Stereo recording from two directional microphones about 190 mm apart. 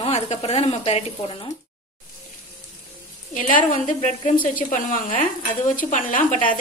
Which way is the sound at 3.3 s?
40° left (ahead or behind).